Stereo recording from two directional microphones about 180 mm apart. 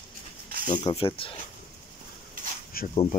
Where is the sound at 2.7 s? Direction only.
55° left (ahead or behind).